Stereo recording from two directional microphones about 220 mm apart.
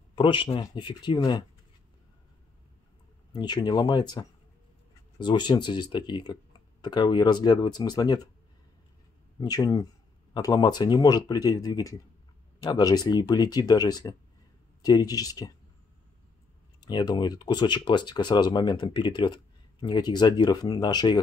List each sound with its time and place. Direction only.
0.1 s speech: 20° left (ahead or behind)
3.3 s speech: 20° left (ahead or behind)
9.4 s speech: 15° left (ahead or behind)
16.8 s speech: 20° left (ahead or behind)